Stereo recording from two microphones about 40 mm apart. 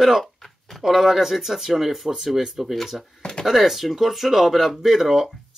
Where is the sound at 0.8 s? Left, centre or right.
Centre.